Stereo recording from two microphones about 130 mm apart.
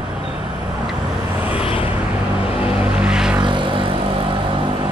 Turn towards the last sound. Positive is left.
turn(degrees=-40)  # may be behind; listen again after turning